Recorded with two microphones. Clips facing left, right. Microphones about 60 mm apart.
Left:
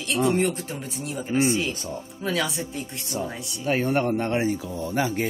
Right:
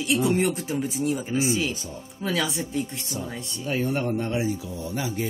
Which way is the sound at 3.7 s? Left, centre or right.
Left.